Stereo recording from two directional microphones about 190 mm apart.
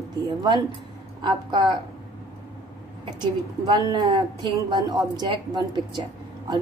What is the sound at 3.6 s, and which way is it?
A woman's voice, 20° right (ahead or behind).